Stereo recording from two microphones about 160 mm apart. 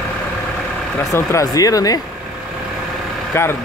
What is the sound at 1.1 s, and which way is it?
Speech, 20° left (ahead or behind).